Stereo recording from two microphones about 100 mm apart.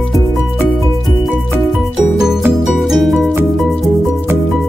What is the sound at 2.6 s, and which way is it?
Music, centre (ahead or behind).